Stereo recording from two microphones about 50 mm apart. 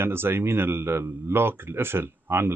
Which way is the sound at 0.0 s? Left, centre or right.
Right.